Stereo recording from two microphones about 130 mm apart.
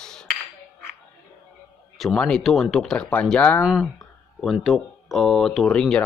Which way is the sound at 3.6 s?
5° right (ahead or behind).